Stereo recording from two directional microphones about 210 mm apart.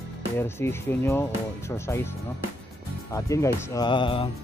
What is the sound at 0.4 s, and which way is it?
Speech, 10° left (ahead or behind).